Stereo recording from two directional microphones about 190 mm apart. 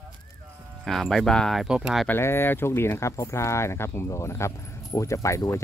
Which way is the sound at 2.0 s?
10° left (ahead or behind).